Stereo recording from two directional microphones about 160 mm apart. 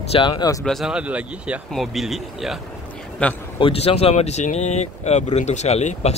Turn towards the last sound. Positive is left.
turn(degrees=40)  # may be behind; listen again after turning